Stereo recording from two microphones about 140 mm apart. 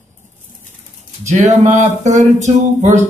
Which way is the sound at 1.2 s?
55° right (ahead or behind).